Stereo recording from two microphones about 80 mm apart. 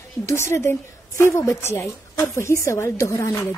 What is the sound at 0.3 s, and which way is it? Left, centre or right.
A woman's voice, left.